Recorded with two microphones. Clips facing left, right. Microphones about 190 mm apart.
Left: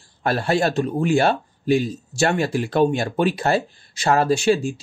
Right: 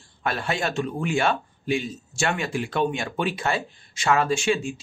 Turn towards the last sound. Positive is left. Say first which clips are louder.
# left 5 dB
turn(degrees=35)  # may be behind; listen again after turning